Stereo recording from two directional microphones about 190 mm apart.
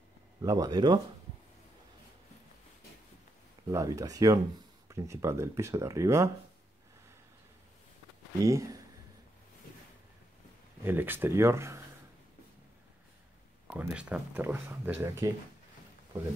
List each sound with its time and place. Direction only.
0.4 s speech: 20° right (ahead or behind)
3.7 s speech: 20° right (ahead or behind)
8.5 s speech: 15° right (ahead or behind)
10.8 s speech: 10° right (ahead or behind)
13.7 s speech: 5° right (ahead or behind)